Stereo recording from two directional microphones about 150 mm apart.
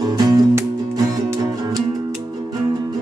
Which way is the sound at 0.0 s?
25° right (ahead or behind).